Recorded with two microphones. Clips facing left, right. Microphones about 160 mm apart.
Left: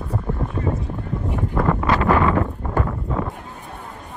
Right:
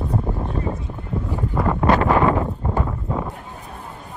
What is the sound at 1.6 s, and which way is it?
Wind, 15° right (ahead or behind).